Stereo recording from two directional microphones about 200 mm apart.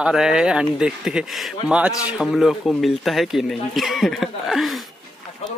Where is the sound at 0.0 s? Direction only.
5° right (ahead or behind).